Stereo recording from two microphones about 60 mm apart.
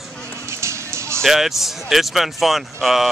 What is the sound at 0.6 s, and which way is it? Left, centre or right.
Music, right.